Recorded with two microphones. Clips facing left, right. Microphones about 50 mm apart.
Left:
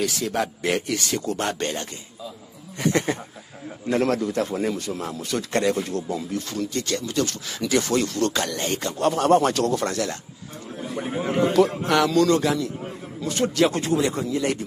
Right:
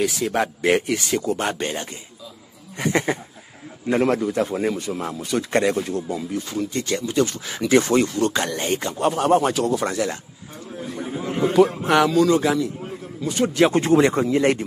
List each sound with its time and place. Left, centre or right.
0.0 s a man's voice: right
11.0 s a sound: left
11.8 s speech: centre
13.5 s a man's voice: right
13.9 s a man's voice: right